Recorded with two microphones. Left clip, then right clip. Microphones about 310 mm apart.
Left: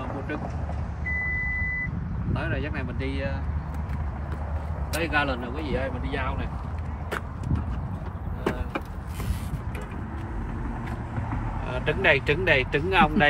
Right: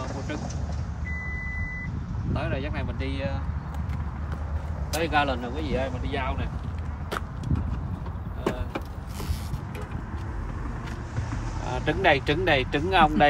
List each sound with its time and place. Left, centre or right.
2.3 s speech: centre
4.9 s speech: centre
7.1 s a sound: centre
11.7 s speech: right